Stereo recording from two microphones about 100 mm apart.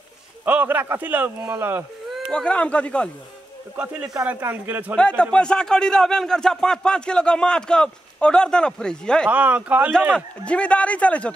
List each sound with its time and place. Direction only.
0.5 s speech: 20° right (ahead or behind)
2.0 s a sound: centre (ahead or behind)
2.4 s a man's voice: 10° left (ahead or behind)
3.7 s speech: 15° right (ahead or behind)
4.9 s a man's voice: 10° left (ahead or behind)
9.3 s speech: 15° right (ahead or behind)
10.1 s a man's voice: 10° left (ahead or behind)